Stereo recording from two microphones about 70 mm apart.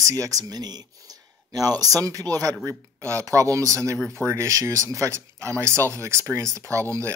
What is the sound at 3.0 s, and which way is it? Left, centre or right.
Speech, right.